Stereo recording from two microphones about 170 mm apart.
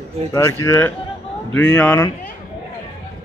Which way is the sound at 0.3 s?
20° left (ahead or behind).